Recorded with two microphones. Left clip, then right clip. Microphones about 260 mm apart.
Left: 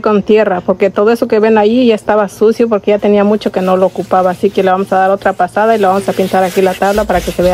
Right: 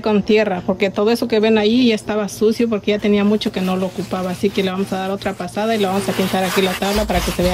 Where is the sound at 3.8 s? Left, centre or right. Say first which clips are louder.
Left 13 dB; left.